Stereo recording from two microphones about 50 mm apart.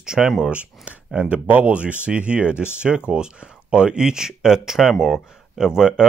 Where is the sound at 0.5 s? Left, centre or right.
Right.